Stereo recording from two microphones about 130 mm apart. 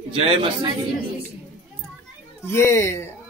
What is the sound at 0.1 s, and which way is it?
Speech, 45° right (ahead or behind).